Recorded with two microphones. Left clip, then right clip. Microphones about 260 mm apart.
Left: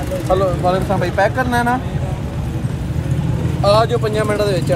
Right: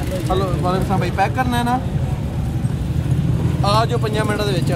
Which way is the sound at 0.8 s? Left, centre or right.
Right.